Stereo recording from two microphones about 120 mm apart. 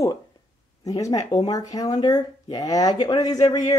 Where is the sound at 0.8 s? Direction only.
30° left (ahead or behind).